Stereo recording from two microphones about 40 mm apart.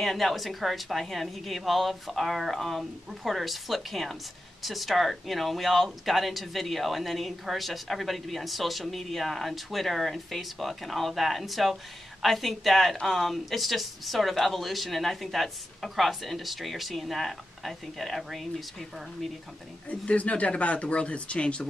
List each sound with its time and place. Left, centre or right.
0.0 s speech: centre
19.9 s speech: left